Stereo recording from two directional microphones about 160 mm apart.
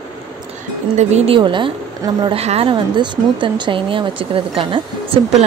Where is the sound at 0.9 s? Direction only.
40° right (ahead or behind).